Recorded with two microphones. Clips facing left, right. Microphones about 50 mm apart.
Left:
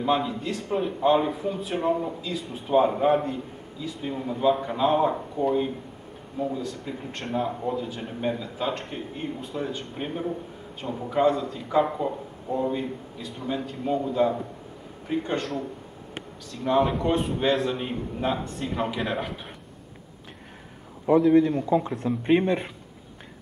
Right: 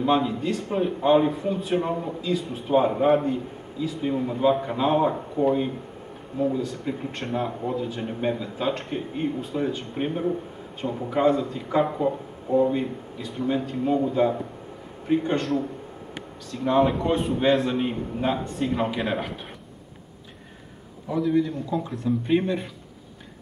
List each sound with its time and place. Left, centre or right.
0.0 s a man's voice: centre
16.6 s a man's voice: centre
21.3 s speech: left